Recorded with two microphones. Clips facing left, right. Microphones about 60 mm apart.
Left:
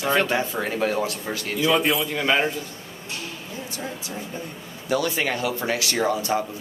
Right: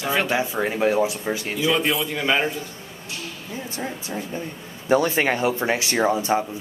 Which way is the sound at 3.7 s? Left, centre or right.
Right.